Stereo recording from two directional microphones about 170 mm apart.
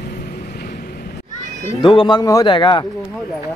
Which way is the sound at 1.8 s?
30° left (ahead or behind).